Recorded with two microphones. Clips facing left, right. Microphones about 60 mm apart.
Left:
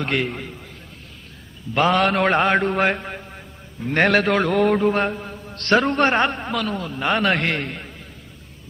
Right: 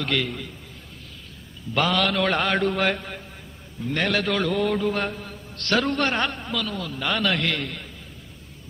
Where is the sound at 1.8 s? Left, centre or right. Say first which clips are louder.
Left 6 dB; left.